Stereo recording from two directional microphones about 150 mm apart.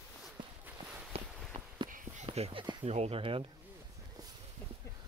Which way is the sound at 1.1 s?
40° right (ahead or behind).